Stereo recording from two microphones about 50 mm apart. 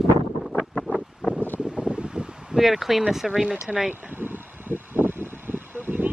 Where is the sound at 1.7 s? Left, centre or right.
Right.